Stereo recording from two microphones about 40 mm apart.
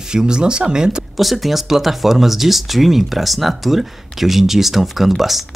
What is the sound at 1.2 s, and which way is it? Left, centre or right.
Speech, centre.